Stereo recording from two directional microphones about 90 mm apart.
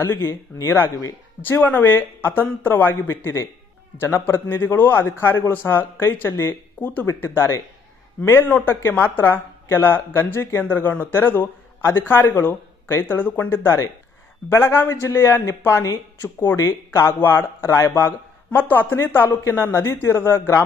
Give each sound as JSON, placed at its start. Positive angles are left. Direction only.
{"t": 0.0, "sound": "speech", "side_deg": 30}
{"t": 1.4, "sound": "speech", "side_deg": 20}